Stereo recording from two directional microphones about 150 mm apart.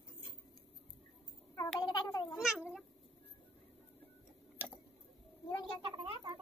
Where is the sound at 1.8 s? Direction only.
30° left (ahead or behind).